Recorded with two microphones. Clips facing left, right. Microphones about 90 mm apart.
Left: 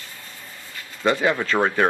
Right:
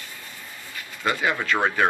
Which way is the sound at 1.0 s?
35° left (ahead or behind).